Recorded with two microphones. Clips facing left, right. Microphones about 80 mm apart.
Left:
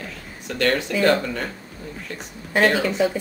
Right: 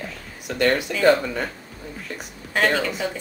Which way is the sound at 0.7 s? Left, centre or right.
Centre.